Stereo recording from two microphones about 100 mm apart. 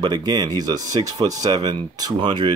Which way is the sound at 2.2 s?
55° right (ahead or behind).